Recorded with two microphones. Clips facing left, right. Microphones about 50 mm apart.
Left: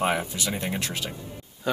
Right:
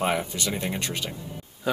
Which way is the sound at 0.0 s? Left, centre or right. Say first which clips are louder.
Even; centre.